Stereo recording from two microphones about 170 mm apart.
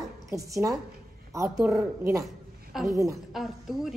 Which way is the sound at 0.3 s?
20° right (ahead or behind).